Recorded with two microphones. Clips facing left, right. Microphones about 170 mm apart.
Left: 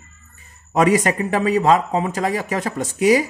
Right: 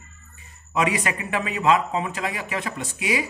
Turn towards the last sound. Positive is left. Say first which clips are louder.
# left 10 dB
turn(degrees=40)  # may be behind; listen again after turning